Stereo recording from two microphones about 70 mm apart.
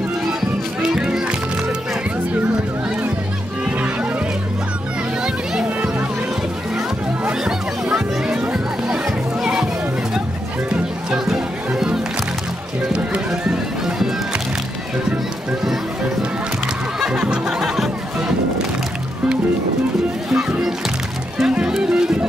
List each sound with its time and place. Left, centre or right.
0.3 s music: centre
3.6 s music: centre
5.2 s music: centre
7.2 s music: centre
10.7 s music: centre
17.0 s music: centre
20.2 s music: centre